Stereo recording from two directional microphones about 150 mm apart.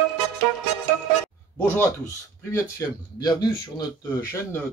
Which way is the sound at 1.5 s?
10° left (ahead or behind).